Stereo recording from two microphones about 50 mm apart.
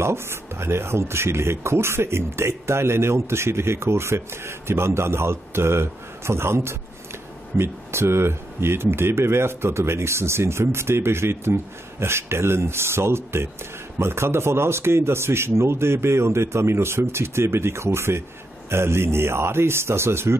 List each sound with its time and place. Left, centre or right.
0.0 s speech: right